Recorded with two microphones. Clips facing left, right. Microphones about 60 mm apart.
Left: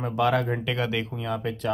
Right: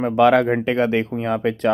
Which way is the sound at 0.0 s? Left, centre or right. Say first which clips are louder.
Right 9 dB; right.